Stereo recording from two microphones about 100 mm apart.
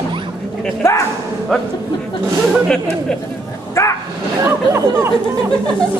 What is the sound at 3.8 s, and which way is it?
Bow-wow, 30° left (ahead or behind).